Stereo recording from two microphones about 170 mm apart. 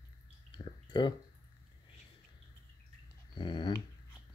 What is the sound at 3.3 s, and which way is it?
Dog, 25° left (ahead or behind).